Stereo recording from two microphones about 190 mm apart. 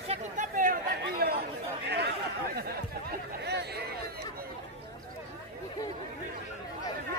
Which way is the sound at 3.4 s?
60° right (ahead or behind).